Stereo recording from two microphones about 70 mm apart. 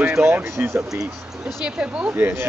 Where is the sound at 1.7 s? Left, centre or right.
Centre.